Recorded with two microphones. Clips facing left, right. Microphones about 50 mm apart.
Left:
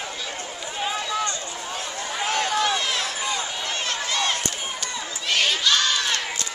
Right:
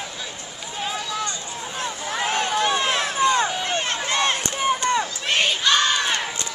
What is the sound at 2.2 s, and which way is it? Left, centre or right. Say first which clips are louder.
Run: right 1 dB; right.